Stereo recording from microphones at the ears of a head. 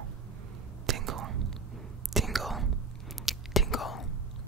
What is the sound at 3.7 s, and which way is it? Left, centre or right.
Whispering, left.